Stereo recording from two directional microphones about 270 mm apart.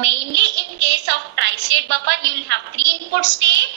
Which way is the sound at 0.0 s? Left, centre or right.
Right.